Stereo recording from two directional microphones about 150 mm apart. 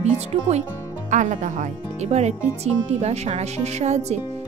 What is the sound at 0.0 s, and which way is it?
Speech, 50° right (ahead or behind).